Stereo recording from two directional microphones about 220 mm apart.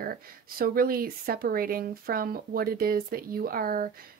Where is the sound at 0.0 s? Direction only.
40° right (ahead or behind).